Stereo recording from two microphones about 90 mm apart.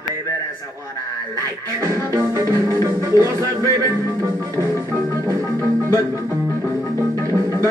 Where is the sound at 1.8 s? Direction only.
40° right (ahead or behind).